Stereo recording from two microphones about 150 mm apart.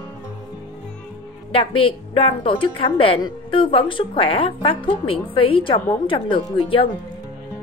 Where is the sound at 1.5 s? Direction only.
35° left (ahead or behind).